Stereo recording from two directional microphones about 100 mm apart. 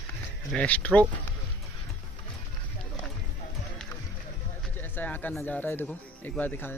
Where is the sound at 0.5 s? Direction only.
15° left (ahead or behind).